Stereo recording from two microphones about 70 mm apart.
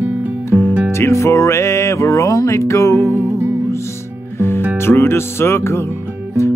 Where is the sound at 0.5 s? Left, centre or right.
Left.